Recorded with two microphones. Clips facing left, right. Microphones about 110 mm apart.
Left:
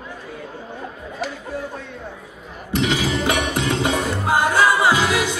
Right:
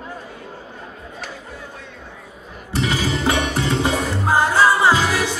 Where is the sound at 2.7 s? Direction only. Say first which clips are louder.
Left 1 dB; 15° left (ahead or behind).